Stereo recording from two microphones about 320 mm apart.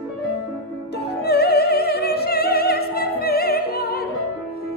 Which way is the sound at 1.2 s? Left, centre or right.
Left.